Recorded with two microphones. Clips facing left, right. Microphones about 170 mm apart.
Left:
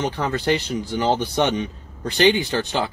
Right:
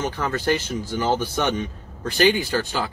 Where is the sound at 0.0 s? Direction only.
20° left (ahead or behind).